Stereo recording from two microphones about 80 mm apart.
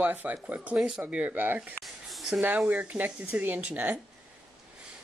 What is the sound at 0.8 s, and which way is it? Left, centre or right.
Speech, centre.